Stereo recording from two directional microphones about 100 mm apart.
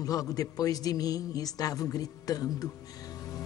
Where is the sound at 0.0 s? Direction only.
40° left (ahead or behind).